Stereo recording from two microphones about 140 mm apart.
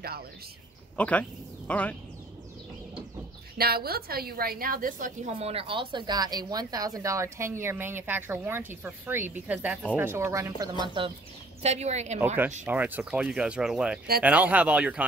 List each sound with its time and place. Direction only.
0.9 s speech: 10° left (ahead or behind)
3.5 s a woman's voice: 90° right; by 5.3 s 70° right (ahead or behind)
5.4 s speech: 45° right (ahead or behind); by 10.7 s 20° right (ahead or behind)
11.0 s speech: 35° right (ahead or behind)
11.6 s speech: 50° right (ahead or behind)
12.6 s speech: 15° right (ahead or behind)